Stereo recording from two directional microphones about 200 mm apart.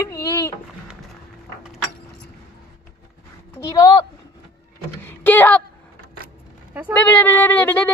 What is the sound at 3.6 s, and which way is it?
Speech, 20° left (ahead or behind).